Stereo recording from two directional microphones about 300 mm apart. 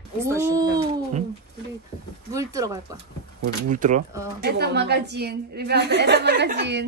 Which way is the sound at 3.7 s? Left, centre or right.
Right.